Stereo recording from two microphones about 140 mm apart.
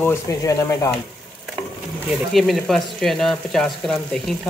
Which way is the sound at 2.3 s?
Centre (ahead or behind).